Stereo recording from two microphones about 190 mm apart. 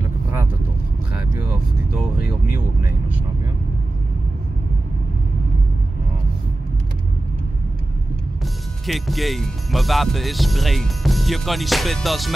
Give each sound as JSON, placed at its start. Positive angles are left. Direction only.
{"t": 2.1, "sound": "vehicle", "side_deg": 50}
{"t": 8.8, "sound": "speech", "side_deg": 0}